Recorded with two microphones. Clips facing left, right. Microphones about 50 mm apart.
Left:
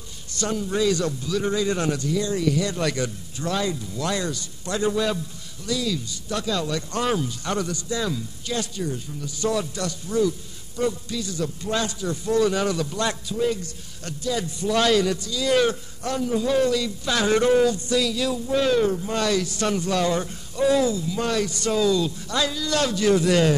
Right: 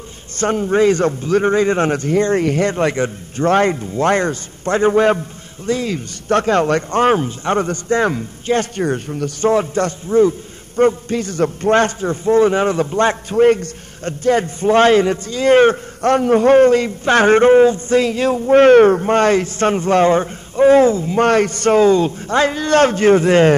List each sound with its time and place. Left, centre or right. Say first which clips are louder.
0.4 s a man's voice: right 9 dB; right
3.4 s a man's voice: right 11 dB; right
9.5 s a man's voice: right 10 dB; right